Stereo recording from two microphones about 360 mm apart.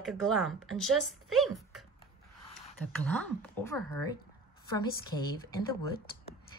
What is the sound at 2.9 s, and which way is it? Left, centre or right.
A woman's voice, centre.